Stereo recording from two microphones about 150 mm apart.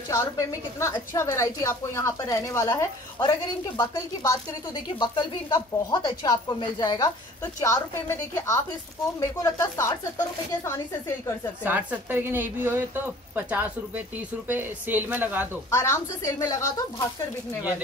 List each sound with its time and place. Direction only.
0.1 s a woman's voice: 20° left (ahead or behind)
11.6 s a woman's voice: 10° right (ahead or behind)
15.7 s a woman's voice: 20° left (ahead or behind)